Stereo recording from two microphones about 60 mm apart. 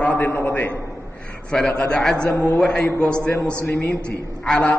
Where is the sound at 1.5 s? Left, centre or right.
Centre.